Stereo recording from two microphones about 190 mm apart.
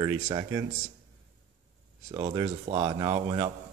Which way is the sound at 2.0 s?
25° right (ahead or behind).